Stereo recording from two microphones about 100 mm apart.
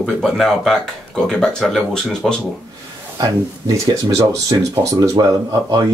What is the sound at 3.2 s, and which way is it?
Speech, 40° right (ahead or behind).